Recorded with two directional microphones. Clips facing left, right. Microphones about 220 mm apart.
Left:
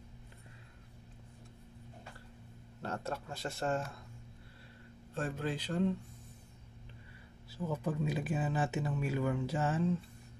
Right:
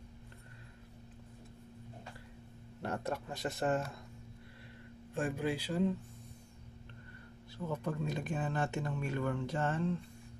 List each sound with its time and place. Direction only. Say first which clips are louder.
2.8 s speech: right 2 dB; 15° right (ahead or behind)
5.1 s speech: right 2 dB; 15° right (ahead or behind)
7.5 s speech: left 2 dB; 5° left (ahead or behind)